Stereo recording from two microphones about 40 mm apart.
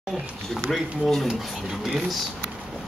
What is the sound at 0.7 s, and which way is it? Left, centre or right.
Speech, centre.